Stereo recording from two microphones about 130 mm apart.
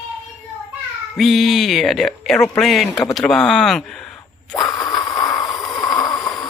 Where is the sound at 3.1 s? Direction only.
5° left (ahead or behind).